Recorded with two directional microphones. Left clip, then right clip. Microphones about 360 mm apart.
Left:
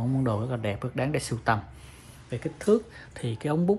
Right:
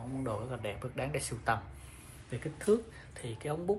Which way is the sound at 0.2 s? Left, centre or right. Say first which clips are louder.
Left 4 dB; left.